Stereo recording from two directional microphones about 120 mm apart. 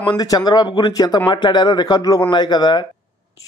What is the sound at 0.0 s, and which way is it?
A man's voice, 35° left (ahead or behind).